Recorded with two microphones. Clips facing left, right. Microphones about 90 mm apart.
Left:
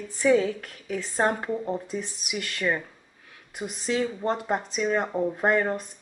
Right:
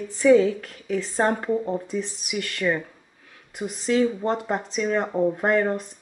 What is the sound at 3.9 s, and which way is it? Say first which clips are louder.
A woman's voice: right 5 dB; 10° left (ahead or behind).